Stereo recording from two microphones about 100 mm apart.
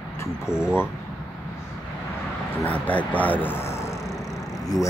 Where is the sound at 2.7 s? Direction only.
15° left (ahead or behind).